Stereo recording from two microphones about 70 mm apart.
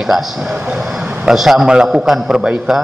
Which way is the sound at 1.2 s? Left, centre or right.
Centre.